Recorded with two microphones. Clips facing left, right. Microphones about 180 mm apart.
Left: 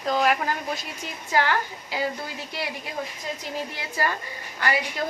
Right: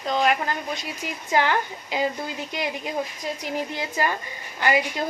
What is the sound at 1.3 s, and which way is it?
A woman's voice, 20° right (ahead or behind).